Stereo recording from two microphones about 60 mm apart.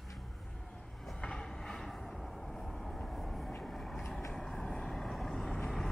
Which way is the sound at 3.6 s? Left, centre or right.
Centre.